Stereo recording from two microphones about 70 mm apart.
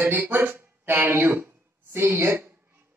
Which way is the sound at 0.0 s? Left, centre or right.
Right.